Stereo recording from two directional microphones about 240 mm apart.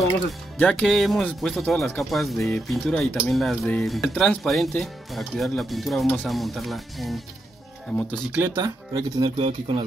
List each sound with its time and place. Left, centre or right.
0.6 s speech: centre
8.5 s speech: centre